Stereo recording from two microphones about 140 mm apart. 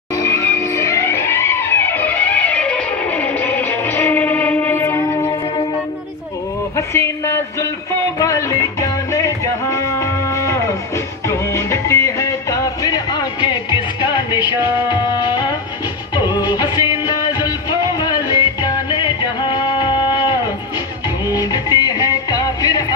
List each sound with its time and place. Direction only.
0.3 s music: 20° left (ahead or behind)
6.9 s a sound: 20° left (ahead or behind)
8.2 s music: 20° left (ahead or behind)